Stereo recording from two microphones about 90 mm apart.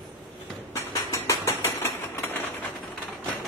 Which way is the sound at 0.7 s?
35° left (ahead or behind).